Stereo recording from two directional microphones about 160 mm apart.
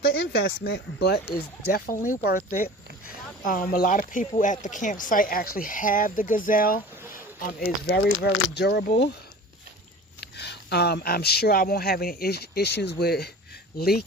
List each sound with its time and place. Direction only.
0.0 s speech: 90° left
2.0 s speech: 55° left (ahead or behind)
7.4 s speech: 75° left (ahead or behind)
10.2 s speech: 90° left